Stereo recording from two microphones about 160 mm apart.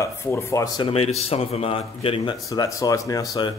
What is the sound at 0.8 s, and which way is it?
Speech, 35° left (ahead or behind).